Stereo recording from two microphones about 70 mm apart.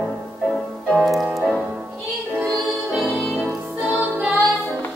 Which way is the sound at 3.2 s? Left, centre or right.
Centre.